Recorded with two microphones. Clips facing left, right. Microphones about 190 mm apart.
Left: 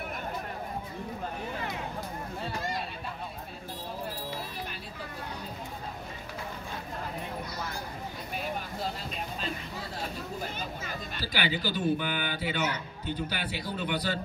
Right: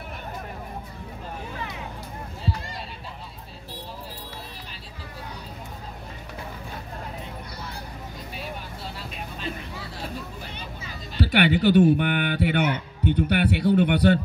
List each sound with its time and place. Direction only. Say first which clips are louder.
11.1 s a man's voice: right 12 dB; 65° right (ahead or behind)